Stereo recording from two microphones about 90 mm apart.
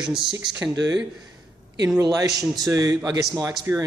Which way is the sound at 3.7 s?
25° right (ahead or behind).